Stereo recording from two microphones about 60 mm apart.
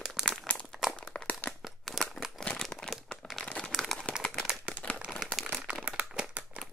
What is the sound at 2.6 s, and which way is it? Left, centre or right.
Crumpling, centre.